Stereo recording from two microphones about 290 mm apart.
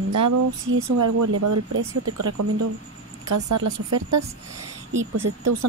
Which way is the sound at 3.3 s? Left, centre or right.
Right.